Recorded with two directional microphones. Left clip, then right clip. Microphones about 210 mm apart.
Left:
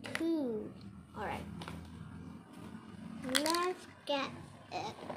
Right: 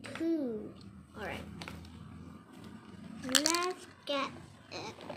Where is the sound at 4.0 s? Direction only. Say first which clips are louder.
Right 1 dB; 5° right (ahead or behind).